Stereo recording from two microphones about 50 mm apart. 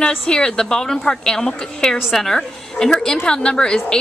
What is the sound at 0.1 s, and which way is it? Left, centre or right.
A woman's voice, centre.